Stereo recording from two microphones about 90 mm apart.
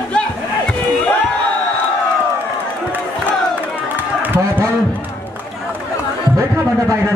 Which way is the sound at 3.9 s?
20° right (ahead or behind).